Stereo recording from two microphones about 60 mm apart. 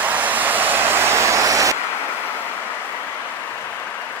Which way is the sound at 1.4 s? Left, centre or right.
Right.